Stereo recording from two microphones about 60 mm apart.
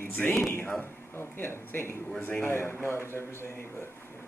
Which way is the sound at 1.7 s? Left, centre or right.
Left.